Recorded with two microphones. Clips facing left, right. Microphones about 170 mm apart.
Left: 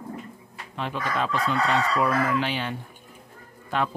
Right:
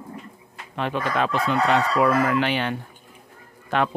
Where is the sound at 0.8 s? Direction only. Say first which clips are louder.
Right 4 dB; 65° right (ahead or behind).